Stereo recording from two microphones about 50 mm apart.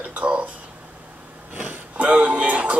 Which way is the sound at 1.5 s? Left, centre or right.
Right.